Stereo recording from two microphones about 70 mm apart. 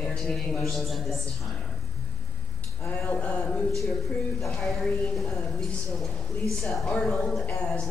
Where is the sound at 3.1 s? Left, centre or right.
Centre.